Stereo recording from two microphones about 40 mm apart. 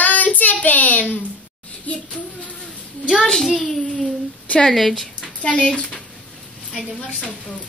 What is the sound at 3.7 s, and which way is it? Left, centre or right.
A child's voice, centre.